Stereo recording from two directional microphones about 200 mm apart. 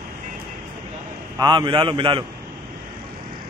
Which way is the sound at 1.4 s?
25° right (ahead or behind).